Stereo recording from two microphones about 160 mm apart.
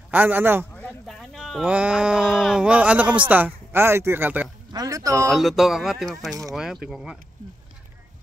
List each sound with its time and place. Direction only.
0.1 s a man's voice: 10° right (ahead or behind)
0.7 s speech: 5° left (ahead or behind); by 5.3 s 20° right (ahead or behind)
5.3 s speech: centre (ahead or behind)